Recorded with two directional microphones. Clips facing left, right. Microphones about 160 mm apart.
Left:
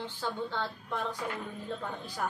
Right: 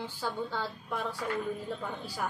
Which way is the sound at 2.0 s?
10° right (ahead or behind).